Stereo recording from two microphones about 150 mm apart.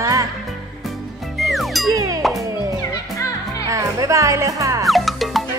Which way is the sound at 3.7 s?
20° right (ahead or behind).